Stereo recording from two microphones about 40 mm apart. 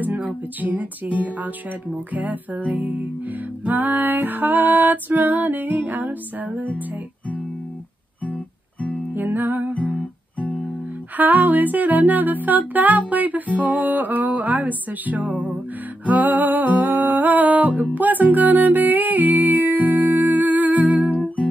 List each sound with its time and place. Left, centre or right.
0.0 s a sound: right
0.6 s music: right
9.1 s music: right
11.1 s music: right